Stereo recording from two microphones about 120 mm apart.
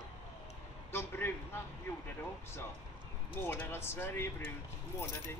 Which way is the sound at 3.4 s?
20° left (ahead or behind).